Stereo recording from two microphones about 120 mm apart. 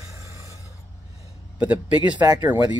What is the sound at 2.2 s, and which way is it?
Speech, 35° right (ahead or behind).